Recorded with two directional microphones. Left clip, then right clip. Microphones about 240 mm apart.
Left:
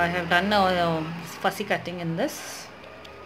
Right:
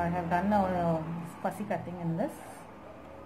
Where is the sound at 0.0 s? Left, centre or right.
Left.